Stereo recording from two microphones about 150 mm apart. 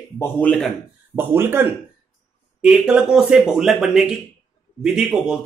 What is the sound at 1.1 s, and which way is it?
Speech, 15° right (ahead or behind).